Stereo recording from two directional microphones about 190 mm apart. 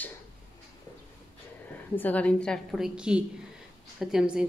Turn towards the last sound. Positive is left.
turn(degrees=-5)  # may be behind; listen again after turning